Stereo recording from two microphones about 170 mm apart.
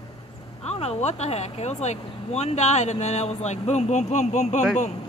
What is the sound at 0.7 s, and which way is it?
Speech, 40° left (ahead or behind).